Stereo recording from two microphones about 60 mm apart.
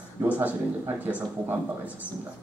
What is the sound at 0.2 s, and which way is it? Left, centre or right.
Speech, right.